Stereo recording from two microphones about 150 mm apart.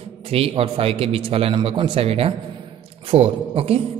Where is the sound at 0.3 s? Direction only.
40° right (ahead or behind).